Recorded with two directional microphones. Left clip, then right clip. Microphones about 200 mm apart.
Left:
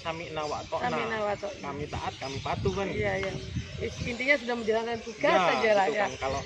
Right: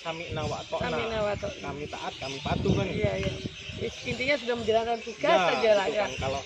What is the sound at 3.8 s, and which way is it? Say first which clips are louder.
Speech: left 1 dB; 20° left (ahead or behind).